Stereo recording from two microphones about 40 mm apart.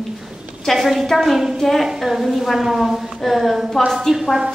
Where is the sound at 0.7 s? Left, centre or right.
Centre.